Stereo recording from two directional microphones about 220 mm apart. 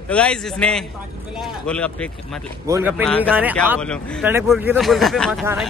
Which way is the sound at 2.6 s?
10° right (ahead or behind).